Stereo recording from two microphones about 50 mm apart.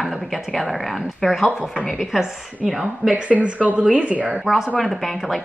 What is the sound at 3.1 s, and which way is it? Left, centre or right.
A woman's voice, right.